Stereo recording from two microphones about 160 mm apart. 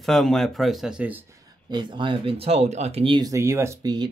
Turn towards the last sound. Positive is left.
turn(degrees=-20)  # may be behind; listen again after turning